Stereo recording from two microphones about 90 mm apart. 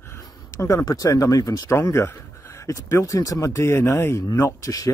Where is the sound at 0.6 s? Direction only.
30° left (ahead or behind).